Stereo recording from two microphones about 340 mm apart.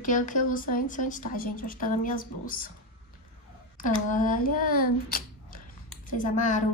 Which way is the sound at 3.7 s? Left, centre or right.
Left.